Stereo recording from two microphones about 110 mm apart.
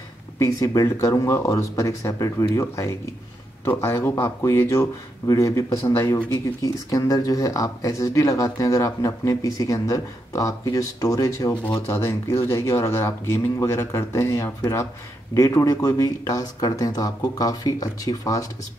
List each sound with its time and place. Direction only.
0.4 s speech: 30° left (ahead or behind)